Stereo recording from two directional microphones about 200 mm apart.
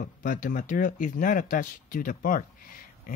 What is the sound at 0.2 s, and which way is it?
Speech, 40° left (ahead or behind).